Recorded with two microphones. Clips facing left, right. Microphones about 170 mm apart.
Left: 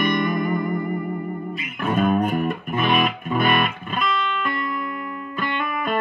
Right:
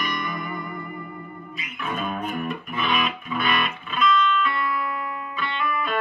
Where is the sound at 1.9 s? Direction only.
50° left (ahead or behind).